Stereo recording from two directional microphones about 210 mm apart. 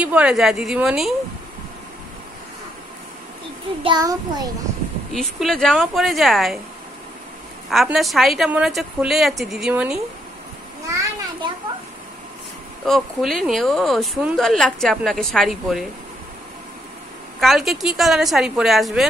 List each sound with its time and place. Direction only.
0.0 s speech: 5° right (ahead or behind)
3.8 s child singing: 20° right (ahead or behind)
5.1 s speech: centre (ahead or behind)
7.7 s speech: centre (ahead or behind)
10.9 s a sound: 15° right (ahead or behind)
12.8 s speech: centre (ahead or behind)
17.4 s speech: centre (ahead or behind)